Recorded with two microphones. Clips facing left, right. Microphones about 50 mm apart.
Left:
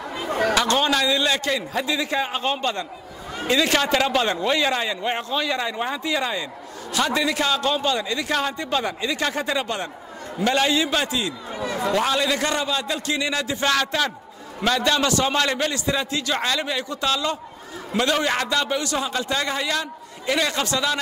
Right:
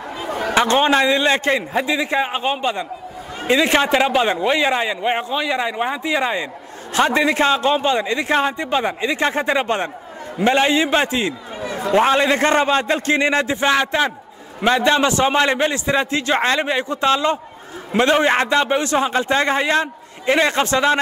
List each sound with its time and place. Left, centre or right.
0.4 s a man's voice: right
13.6 s a man's voice: right